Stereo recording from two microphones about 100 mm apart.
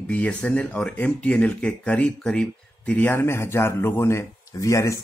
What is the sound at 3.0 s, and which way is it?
Speech, 25° left (ahead or behind).